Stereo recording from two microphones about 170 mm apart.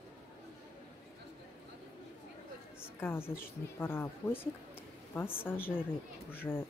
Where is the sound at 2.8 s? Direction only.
15° left (ahead or behind).